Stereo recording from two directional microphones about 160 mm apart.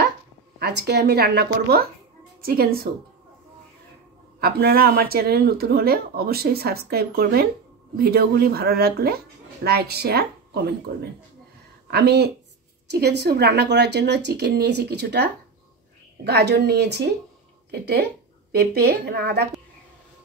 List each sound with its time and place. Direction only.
0.6 s speech: 90° right
2.4 s speech: 70° right (ahead or behind)
4.4 s speech: 75° right (ahead or behind); by 10.7 s 90° right
11.9 s speech: 90° right
16.3 s speech: 90° right
17.6 s speech: 75° right (ahead or behind)